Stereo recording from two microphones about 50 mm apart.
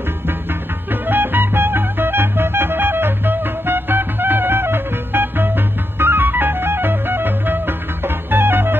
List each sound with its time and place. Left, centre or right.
1.0 s music: right